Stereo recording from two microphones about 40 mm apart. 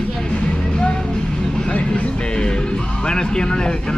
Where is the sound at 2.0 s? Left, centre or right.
Left.